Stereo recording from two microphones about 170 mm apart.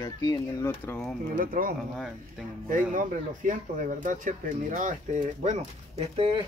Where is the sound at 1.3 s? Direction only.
55° right (ahead or behind).